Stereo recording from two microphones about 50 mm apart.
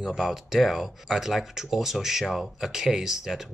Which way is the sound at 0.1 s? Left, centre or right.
Centre.